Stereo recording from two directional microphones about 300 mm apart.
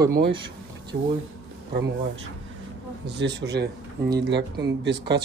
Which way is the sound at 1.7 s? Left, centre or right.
Right.